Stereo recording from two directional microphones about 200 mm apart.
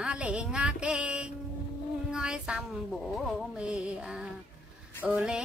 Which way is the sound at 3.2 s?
Centre (ahead or behind).